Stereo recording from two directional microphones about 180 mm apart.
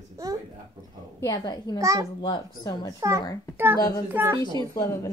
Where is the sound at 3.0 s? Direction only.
15° right (ahead or behind).